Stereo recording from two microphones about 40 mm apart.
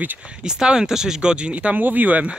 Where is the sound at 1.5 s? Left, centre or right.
Right.